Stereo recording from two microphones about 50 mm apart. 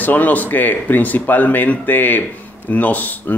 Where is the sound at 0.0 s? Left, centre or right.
Left.